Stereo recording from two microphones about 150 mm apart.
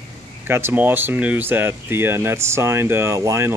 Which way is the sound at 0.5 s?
15° right (ahead or behind).